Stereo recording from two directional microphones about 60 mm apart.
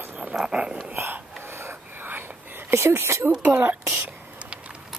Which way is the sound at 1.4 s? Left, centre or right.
Right.